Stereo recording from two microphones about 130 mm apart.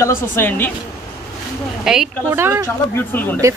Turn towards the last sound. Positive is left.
turn(degrees=15)  # may be behind; listen again after turning